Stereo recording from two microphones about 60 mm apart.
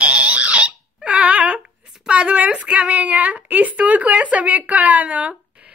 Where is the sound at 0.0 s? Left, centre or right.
Right.